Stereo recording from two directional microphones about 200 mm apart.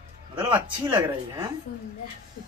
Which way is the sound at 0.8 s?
20° right (ahead or behind).